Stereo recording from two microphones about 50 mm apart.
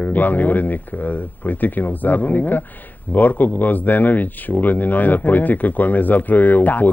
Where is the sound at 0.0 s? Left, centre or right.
Left.